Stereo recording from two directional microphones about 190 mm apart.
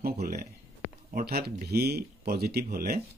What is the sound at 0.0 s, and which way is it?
Speech, 55° right (ahead or behind).